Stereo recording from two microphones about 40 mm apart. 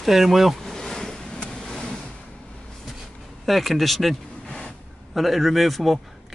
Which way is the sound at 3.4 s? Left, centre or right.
Centre.